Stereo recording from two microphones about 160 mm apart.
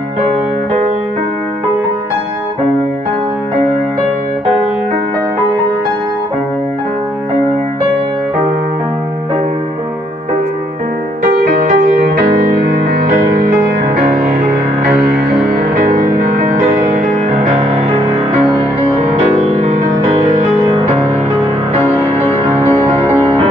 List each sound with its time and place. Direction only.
11.5 s music: 65° right (ahead or behind)
15.9 s music: 55° right (ahead or behind)
19.3 s music: 40° right (ahead or behind)